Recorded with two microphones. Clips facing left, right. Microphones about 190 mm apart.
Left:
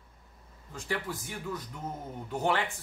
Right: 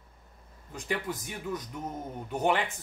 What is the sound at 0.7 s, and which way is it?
Speech, 15° right (ahead or behind).